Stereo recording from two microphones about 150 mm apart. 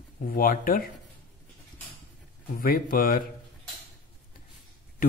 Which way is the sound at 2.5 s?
75° left (ahead or behind).